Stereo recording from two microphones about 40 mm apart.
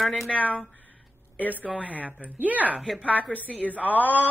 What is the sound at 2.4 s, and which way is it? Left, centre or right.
Speech, right.